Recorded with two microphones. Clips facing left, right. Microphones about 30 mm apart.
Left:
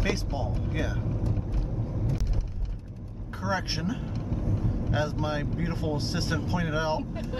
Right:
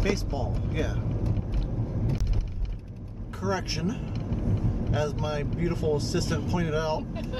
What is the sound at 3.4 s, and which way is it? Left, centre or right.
Speech, left.